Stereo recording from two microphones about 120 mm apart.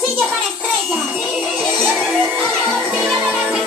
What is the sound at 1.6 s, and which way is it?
Music, 5° left (ahead or behind).